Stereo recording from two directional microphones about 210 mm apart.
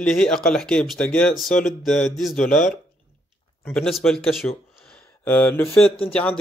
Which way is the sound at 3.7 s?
Centre (ahead or behind).